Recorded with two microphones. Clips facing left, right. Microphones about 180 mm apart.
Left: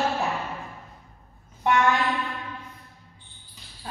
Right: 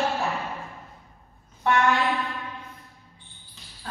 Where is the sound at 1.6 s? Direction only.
15° left (ahead or behind).